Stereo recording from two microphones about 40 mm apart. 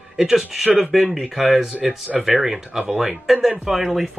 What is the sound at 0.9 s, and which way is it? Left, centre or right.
Speech, centre.